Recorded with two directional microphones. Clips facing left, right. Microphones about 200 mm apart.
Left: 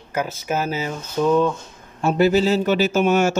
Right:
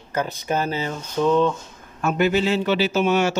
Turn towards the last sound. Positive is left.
turn(degrees=50)  # may be behind; listen again after turning